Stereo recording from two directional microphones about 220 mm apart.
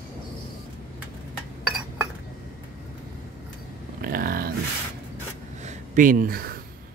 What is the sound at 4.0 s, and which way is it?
Speech, 40° right (ahead or behind).